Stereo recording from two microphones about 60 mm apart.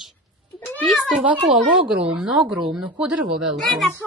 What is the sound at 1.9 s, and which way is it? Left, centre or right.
Speech, centre.